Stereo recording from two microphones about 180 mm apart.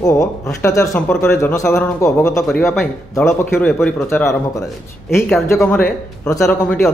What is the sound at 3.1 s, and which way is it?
A man's voice, 15° left (ahead or behind).